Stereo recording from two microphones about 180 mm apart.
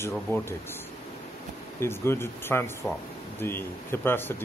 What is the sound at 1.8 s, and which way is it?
Speech, 15° left (ahead or behind).